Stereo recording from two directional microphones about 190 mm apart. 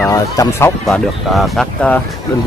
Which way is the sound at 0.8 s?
Centre (ahead or behind).